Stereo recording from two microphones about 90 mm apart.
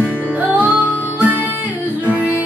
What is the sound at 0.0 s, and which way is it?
Music, 20° right (ahead or behind).